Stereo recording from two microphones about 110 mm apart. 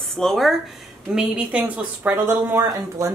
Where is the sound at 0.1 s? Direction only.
Centre (ahead or behind).